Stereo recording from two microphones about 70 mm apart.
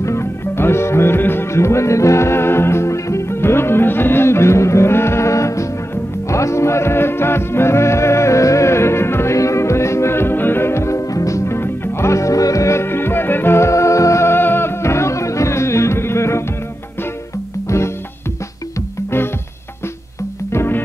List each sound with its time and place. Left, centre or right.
0.0 s music: left
17.6 s music: left
20.5 s music: left